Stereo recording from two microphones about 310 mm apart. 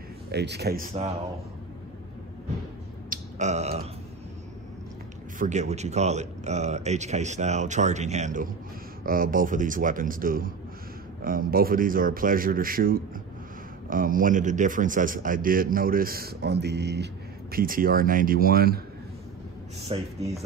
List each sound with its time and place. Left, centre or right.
0.3 s speech: right
3.1 s burping: right
5.4 s a man's voice: right
19.9 s a man's voice: right